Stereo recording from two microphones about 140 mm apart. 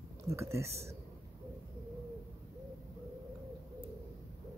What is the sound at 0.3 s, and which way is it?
Speech, 20° right (ahead or behind).